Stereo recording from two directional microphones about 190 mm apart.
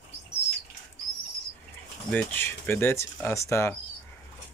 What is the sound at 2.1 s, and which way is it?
Speech, 10° left (ahead or behind).